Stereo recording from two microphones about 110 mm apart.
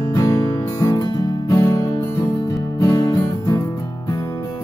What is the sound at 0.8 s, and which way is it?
Music, 35° left (ahead or behind).